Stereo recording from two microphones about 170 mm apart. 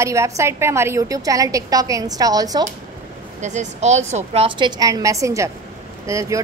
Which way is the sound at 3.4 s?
45° right (ahead or behind).